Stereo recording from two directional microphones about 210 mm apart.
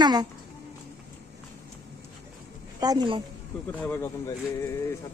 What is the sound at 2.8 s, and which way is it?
Speech, 20° right (ahead or behind).